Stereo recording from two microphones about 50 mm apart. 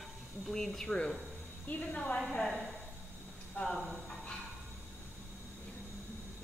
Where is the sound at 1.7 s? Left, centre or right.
Left.